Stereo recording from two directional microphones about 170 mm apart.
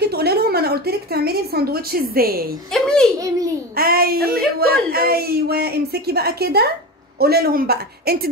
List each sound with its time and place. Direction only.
0.0 s speech: 70° right (ahead or behind)
2.7 s a child's voice: 5° left (ahead or behind)
3.7 s a woman's voice: 60° right (ahead or behind)